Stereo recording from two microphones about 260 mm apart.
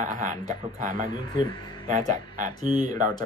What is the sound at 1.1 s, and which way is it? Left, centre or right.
Speech, centre.